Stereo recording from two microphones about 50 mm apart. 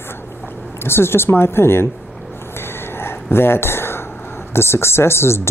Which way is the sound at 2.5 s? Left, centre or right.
Left.